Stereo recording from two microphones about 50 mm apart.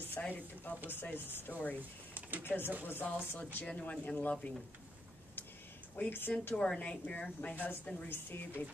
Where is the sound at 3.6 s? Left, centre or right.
Left.